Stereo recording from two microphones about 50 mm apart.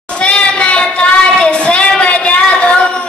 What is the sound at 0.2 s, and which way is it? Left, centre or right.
Child singing, left.